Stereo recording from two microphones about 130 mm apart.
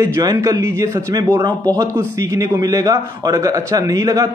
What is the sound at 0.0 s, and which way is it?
A man's voice, 25° right (ahead or behind).